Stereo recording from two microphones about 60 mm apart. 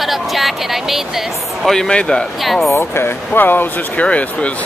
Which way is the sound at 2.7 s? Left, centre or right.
Left.